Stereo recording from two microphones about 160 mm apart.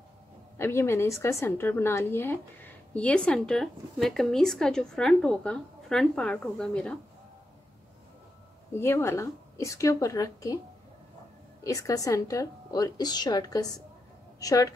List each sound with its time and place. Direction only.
0.6 s a woman's voice: 15° left (ahead or behind)
8.7 s a woman's voice: 15° left (ahead or behind)
11.6 s a woman's voice: 20° left (ahead or behind)